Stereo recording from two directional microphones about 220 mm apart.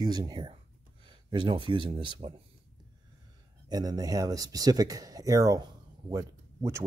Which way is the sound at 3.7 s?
15° right (ahead or behind).